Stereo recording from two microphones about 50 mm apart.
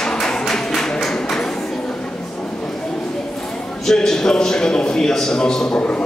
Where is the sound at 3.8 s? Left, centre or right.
Centre.